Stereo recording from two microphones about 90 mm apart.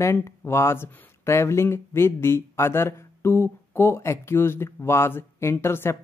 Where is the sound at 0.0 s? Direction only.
30° left (ahead or behind).